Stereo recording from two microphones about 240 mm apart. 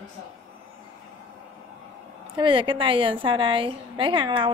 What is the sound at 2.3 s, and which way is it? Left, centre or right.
A woman's voice, centre.